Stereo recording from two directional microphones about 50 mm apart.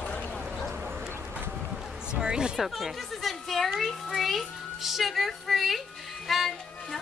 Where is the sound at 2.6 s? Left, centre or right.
Centre.